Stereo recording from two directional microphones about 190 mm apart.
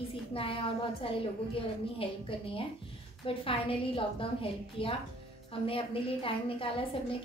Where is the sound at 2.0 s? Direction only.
30° left (ahead or behind).